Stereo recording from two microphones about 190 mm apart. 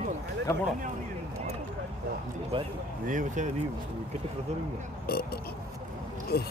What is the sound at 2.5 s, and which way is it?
Speech, 30° right (ahead or behind).